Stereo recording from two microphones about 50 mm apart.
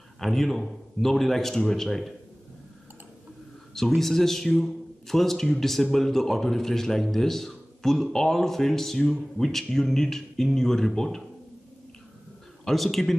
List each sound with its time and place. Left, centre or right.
0.2 s a man's voice: centre
3.7 s a man's voice: centre
12.6 s a man's voice: centre